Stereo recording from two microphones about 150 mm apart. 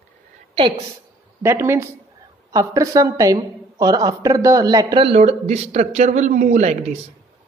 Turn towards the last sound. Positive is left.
turn(degrees=-45)  # may be behind; listen again after turning